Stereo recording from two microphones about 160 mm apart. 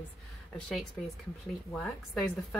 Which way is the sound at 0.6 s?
5° left (ahead or behind).